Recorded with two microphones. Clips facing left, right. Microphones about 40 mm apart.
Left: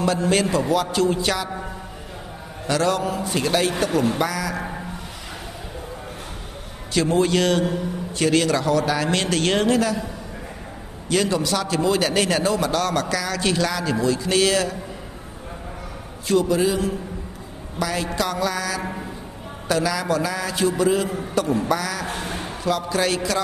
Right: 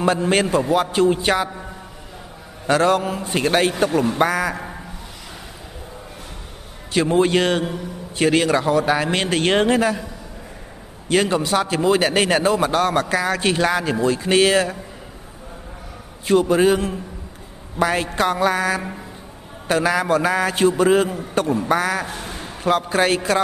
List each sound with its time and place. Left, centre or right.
0.3 s a man's voice: right
2.6 s a man's voice: right
6.9 s a man's voice: right
11.1 s a man's voice: right
16.3 s a man's voice: right
22.0 s a sound: left
22.6 s a man's voice: right